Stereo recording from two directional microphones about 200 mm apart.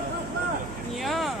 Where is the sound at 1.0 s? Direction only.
Centre (ahead or behind).